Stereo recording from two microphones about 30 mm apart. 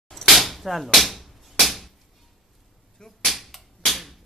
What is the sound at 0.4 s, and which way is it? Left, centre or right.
Whip, centre.